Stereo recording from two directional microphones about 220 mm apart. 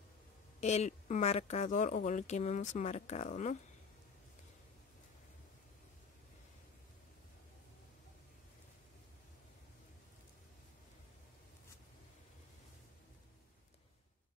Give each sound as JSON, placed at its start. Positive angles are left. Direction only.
{"t": 0.6, "sound": "speech", "side_deg": 30}